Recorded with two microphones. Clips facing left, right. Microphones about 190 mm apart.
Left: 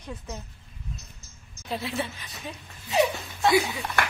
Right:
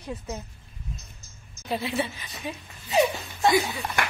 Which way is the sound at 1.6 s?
Centre (ahead or behind).